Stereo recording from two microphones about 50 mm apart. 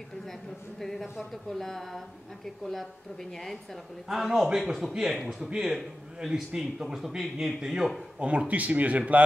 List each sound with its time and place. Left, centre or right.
0.3 s a man's voice: centre
4.1 s a man's voice: centre
5.5 s speech: centre
8.2 s speech: right